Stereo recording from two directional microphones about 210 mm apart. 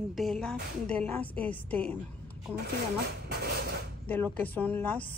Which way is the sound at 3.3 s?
45° right (ahead or behind).